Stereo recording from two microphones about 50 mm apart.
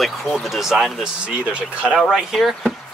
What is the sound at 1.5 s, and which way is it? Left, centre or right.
Speech, right.